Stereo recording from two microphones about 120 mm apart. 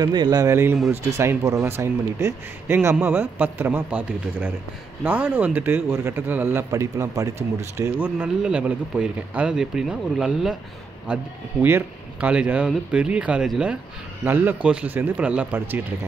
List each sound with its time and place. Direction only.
0.0 s speech: 35° right (ahead or behind)
0.5 s speech: 20° right (ahead or behind)
8.0 s speech: 10° right (ahead or behind)
11.6 s speech: 15° right (ahead or behind)